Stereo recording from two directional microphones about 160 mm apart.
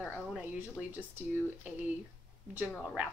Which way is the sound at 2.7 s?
Centre (ahead or behind).